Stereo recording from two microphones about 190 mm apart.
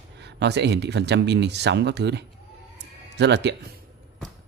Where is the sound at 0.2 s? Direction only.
65° right (ahead or behind).